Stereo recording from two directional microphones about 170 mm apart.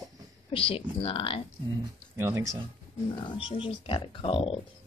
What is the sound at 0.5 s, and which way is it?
Speech, 35° left (ahead or behind).